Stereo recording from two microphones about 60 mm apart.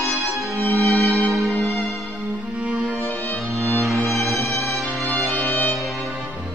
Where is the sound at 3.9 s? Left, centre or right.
Centre.